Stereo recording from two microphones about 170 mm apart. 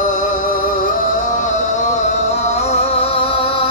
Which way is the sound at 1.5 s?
40° left (ahead or behind).